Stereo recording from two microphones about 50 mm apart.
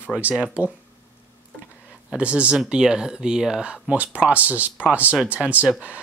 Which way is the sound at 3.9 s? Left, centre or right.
Right.